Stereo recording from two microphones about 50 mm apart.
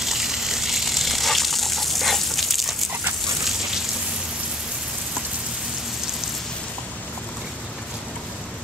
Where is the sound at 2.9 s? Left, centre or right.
Right.